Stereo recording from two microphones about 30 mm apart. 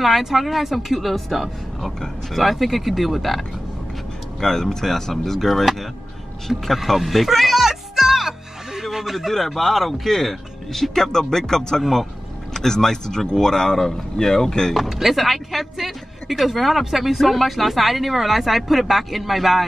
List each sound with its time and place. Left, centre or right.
0.2 s speech: centre
4.4 s speech: centre
6.4 s music: centre
9.1 s speech: centre; by 14.7 s left
14.9 s speech: centre